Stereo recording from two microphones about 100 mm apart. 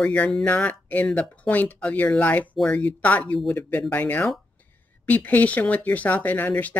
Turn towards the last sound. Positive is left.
turn(degrees=15)  # may be behind; listen again after turning